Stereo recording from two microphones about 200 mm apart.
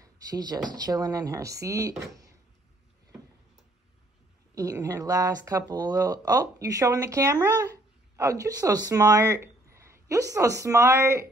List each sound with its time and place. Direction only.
0.0 s speech: 20° right (ahead or behind)
4.6 s speech: 20° right (ahead or behind)